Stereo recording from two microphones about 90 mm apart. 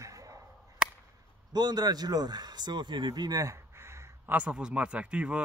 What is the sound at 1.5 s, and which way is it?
Speech, 50° right (ahead or behind).